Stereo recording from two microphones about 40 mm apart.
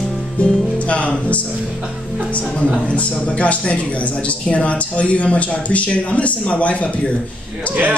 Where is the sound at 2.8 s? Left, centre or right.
Left.